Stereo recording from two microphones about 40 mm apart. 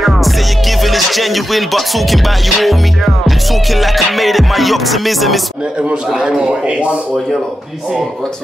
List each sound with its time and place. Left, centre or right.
0.0 s music: centre
6.1 s a man's voice: centre